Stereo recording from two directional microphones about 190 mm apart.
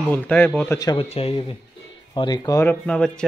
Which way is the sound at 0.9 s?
30° left (ahead or behind).